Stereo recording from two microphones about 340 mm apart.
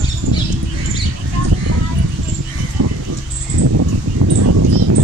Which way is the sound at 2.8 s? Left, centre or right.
Right.